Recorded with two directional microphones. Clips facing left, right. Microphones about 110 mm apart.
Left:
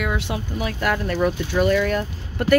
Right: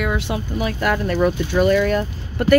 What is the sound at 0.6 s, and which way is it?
Speech, 20° right (ahead or behind).